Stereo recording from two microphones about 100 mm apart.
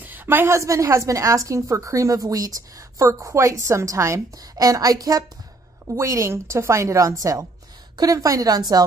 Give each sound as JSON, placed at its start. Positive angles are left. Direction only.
{"t": 0.0, "sound": "a woman's voice", "side_deg": -20}